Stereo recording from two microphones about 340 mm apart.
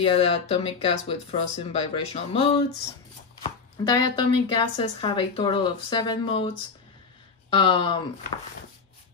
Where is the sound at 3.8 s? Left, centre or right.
Centre.